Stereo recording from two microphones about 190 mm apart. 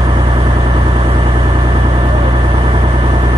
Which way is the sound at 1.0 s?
25° right (ahead or behind).